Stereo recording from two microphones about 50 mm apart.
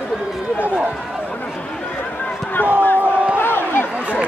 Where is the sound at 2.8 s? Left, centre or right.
Left.